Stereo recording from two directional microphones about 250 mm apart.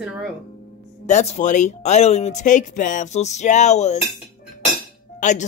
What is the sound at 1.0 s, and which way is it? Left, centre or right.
Speech, left.